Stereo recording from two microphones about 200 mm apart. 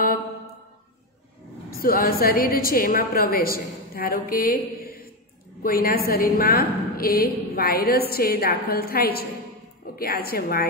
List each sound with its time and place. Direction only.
1.8 s a woman's voice: 45° left (ahead or behind)